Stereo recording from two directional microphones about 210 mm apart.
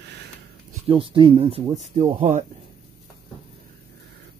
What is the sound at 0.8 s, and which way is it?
Speech, 25° right (ahead or behind).